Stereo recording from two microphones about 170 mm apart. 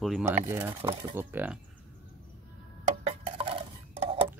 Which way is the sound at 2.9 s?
40° right (ahead or behind).